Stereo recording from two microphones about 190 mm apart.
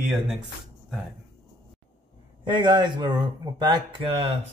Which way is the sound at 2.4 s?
25° right (ahead or behind).